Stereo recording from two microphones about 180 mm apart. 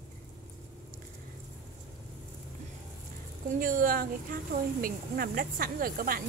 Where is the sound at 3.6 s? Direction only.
50° right (ahead or behind).